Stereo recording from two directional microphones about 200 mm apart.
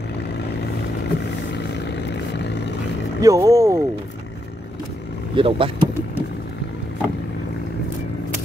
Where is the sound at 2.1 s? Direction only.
60° left (ahead or behind).